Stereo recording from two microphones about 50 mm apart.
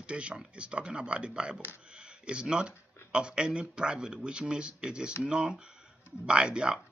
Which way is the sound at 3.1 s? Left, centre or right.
Centre.